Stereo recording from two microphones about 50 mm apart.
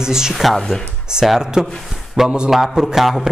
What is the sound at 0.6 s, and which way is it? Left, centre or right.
Speech, centre.